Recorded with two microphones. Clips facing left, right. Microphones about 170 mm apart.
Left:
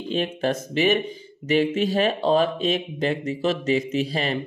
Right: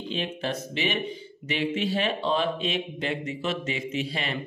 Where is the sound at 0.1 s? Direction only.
45° left (ahead or behind).